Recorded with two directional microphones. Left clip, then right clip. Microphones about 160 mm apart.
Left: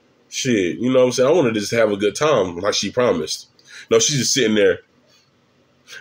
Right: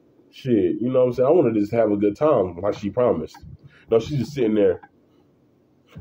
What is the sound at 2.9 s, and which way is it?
Speech, 35° left (ahead or behind).